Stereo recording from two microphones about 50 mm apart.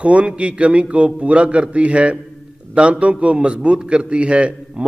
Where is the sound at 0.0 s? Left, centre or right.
Right.